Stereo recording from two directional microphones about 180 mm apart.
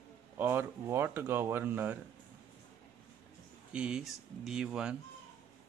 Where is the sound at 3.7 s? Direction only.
5° right (ahead or behind).